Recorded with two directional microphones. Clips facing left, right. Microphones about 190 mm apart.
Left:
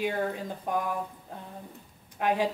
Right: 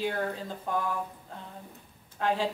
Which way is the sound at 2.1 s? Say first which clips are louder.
Left 2 dB; 15° left (ahead or behind).